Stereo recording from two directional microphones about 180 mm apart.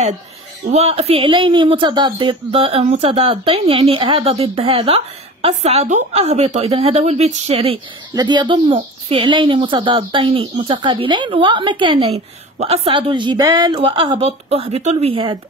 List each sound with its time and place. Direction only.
0.7 s speech: 35° right (ahead or behind)
8.1 s speech: 25° right (ahead or behind)